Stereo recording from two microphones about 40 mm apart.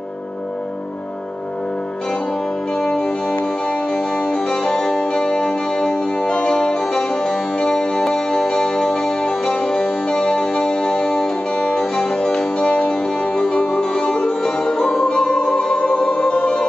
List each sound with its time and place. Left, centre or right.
2.7 s music: centre